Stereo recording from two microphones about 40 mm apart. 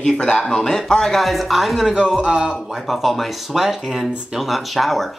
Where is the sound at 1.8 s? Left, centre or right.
Right.